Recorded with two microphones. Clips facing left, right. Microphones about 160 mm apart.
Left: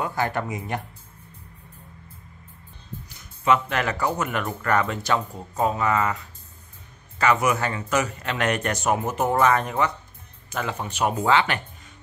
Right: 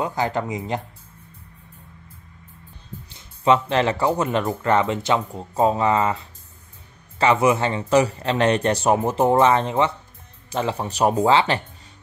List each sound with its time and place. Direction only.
0.0 s speech: 20° right (ahead or behind)
3.1 s speech: 30° right (ahead or behind)